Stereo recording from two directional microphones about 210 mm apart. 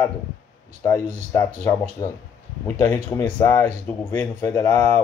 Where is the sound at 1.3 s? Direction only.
10° left (ahead or behind).